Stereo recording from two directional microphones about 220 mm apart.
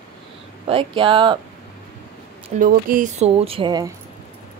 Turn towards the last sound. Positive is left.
turn(degrees=-15)  # may be behind; listen again after turning